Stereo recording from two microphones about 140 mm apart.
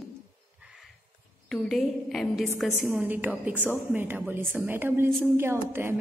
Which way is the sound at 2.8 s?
10° right (ahead or behind).